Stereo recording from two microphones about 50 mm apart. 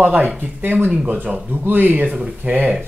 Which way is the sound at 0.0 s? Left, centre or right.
Right.